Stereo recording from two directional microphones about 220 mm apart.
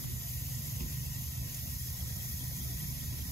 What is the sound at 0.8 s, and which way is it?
Vehicle, centre (ahead or behind).